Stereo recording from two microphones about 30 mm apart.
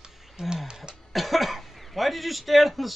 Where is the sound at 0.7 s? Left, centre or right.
Right.